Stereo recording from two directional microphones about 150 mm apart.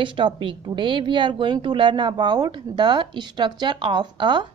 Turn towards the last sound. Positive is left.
turn(degrees=-30)  # may be behind; listen again after turning